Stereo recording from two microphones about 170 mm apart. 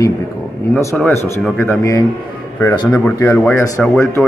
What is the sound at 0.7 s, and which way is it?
Speech, 10° left (ahead or behind).